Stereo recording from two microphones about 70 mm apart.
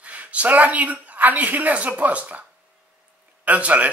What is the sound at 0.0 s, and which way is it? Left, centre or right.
Speech, centre.